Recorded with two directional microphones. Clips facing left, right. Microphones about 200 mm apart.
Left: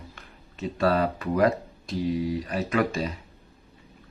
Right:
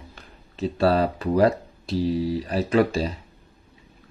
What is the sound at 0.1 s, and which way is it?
Speech, 35° right (ahead or behind).